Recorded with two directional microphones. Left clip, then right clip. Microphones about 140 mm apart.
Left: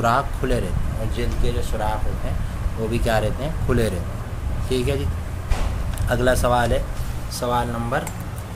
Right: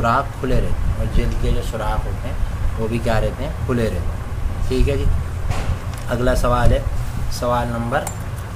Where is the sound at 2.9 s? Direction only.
20° left (ahead or behind).